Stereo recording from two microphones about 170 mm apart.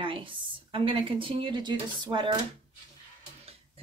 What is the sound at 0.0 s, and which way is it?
Speech, 30° right (ahead or behind).